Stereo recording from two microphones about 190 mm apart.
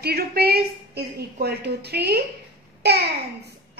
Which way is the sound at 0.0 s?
55° right (ahead or behind).